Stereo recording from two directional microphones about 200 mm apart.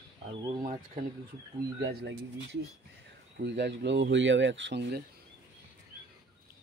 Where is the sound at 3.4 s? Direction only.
60° right (ahead or behind).